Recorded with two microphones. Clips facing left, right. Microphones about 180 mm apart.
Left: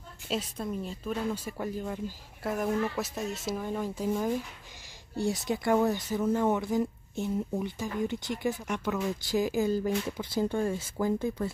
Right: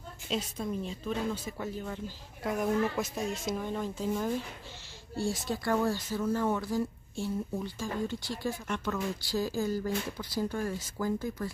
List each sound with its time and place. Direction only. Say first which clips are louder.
0.6 s speech: even; 5° left (ahead or behind); by 11.5 s 25° left (ahead or behind)